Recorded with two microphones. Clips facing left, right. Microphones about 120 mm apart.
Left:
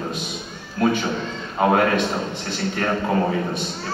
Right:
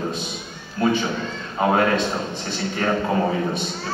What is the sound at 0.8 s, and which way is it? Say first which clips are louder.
A man's voice: even; 5° left (ahead or behind).